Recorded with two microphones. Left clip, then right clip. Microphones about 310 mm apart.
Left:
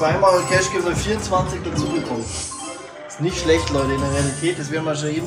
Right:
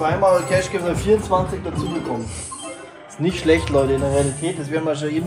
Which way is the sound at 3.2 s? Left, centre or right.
Right.